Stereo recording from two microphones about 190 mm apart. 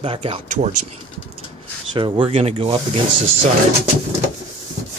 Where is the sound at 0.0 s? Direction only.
30° right (ahead or behind).